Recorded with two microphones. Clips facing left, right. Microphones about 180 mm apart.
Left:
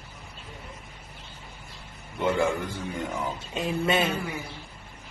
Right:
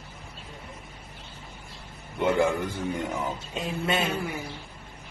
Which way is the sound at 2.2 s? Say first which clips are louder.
Right 2 dB; 20° right (ahead or behind).